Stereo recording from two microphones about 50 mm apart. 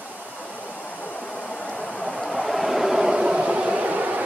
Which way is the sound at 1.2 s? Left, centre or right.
Centre.